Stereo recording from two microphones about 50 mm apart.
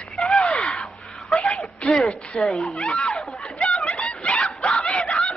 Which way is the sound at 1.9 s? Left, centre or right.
Centre.